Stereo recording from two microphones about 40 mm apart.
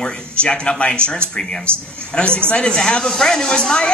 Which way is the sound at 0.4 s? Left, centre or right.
Left.